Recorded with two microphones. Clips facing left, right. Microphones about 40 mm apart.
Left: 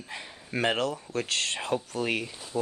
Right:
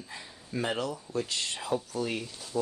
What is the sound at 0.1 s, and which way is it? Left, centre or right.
Speech, left.